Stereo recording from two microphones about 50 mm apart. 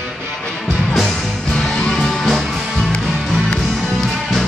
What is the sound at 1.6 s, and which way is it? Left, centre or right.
Music, centre.